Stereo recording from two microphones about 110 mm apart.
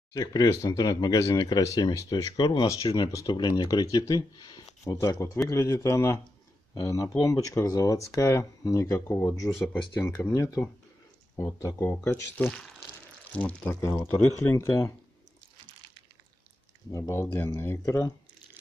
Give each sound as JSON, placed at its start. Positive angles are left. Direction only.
{"t": 0.1, "sound": "speech", "side_deg": 35}
{"t": 13.7, "sound": "speech", "side_deg": 25}
{"t": 16.9, "sound": "speech", "side_deg": 30}
{"t": 17.8, "sound": "speech", "side_deg": 30}